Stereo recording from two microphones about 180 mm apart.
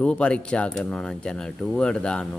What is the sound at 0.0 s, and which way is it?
Speech, 5° left (ahead or behind).